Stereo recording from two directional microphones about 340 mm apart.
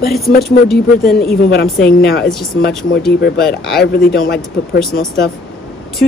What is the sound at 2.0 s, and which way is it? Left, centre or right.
Speech, left.